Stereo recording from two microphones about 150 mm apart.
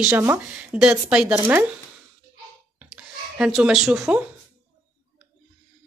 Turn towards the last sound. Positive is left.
turn(degrees=-5)  # may be behind; listen again after turning